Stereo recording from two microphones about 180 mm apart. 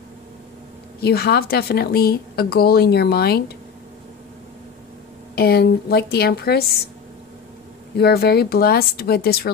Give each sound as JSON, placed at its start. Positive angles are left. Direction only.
{"t": 1.0, "sound": "a woman's voice", "side_deg": 60}
{"t": 5.3, "sound": "a woman's voice", "side_deg": 60}
{"t": 8.0, "sound": "a woman's voice", "side_deg": 60}